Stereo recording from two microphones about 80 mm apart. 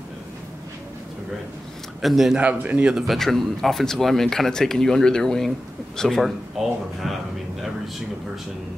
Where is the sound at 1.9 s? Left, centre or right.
Centre.